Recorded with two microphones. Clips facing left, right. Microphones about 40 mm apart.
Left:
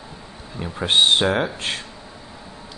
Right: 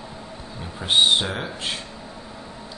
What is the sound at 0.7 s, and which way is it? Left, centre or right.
Speech, left.